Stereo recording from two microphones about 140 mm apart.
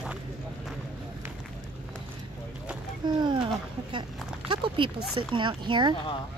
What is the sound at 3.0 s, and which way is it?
Speech, 30° right (ahead or behind).